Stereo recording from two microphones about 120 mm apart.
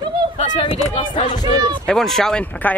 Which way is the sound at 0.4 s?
60° left (ahead or behind).